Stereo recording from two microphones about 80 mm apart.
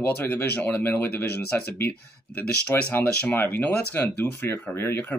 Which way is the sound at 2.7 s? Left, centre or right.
Left.